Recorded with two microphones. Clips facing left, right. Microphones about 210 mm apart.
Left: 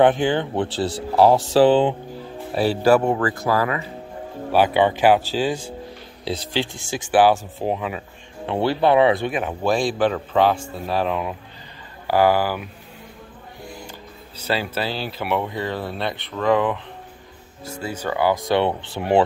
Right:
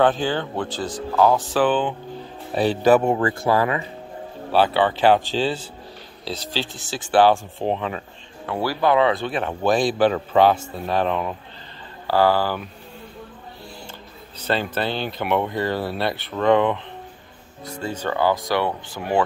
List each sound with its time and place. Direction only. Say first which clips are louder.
0.0 s speech: left 3 dB; 15° left (ahead or behind)
1.1 s speech: left 3 dB; 30° left (ahead or behind)
2.5 s speech: even; 5° left (ahead or behind)
3.1 s speech: right 1 dB; 25° right (ahead or behind)
4.5 s speech: left 1 dB; 15° left (ahead or behind)
8.5 s speech: left 2 dB; 25° left (ahead or behind)
14.4 s speech: right 1 dB; 5° left (ahead or behind); by 19.2 s 25° left (ahead or behind)